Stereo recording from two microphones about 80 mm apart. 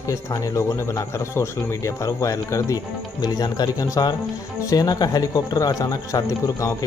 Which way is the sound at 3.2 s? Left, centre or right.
Left.